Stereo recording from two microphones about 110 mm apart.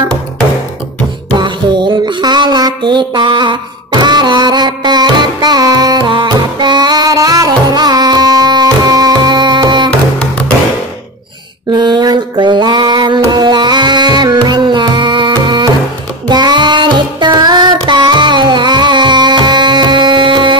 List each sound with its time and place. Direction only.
1.3 s music: 45° right (ahead or behind)
11.7 s mantra: 40° right (ahead or behind)
13.3 s music: 40° right (ahead or behind)